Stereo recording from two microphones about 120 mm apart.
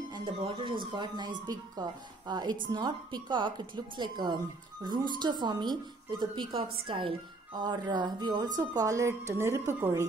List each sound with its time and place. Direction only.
0.1 s speech: 40° right (ahead or behind); by 10.0 s 20° right (ahead or behind)